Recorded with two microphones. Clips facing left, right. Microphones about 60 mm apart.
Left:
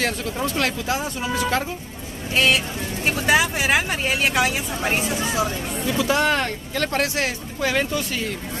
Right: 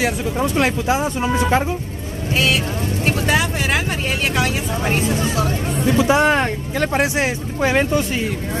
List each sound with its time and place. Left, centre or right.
0.0 s speech: centre
2.3 s speech: centre
5.9 s speech: right